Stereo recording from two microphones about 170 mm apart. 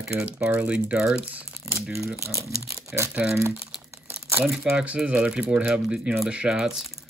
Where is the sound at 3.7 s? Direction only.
10° right (ahead or behind).